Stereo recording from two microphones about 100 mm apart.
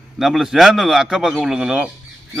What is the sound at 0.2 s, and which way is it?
A man's voice, 5° right (ahead or behind).